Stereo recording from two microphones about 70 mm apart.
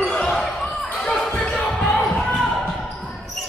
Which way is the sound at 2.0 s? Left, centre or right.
Centre.